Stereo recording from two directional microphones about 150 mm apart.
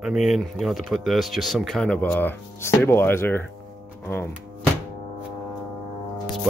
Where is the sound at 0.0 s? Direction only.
Centre (ahead or behind); by 3.4 s 15° left (ahead or behind).